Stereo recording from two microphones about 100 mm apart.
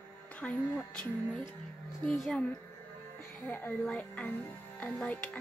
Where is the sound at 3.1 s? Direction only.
20° left (ahead or behind).